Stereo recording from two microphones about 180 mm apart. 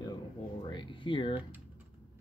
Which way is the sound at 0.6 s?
25° left (ahead or behind).